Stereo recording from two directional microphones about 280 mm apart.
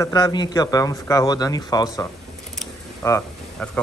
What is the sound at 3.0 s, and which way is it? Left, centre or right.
Speech, centre.